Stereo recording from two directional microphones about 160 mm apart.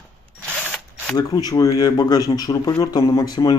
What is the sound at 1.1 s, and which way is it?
Speech, 25° left (ahead or behind).